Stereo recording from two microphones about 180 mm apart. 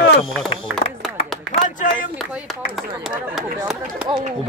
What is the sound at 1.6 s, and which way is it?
Speech, 45° left (ahead or behind).